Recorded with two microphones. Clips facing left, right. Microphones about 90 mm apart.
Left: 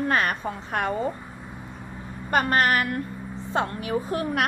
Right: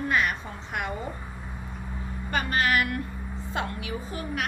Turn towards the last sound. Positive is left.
turn(degrees=55)  # may be behind; listen again after turning